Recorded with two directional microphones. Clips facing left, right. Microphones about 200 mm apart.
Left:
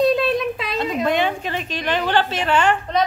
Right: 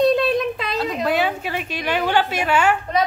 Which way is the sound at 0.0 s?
Centre (ahead or behind).